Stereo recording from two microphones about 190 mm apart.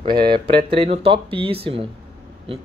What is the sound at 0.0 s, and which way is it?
Speech, 25° right (ahead or behind).